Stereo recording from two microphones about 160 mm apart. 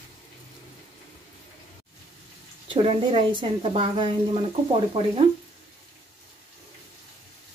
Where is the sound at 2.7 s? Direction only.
35° right (ahead or behind).